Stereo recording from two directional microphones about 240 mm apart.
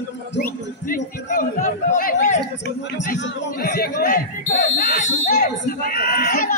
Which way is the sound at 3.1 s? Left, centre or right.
Left.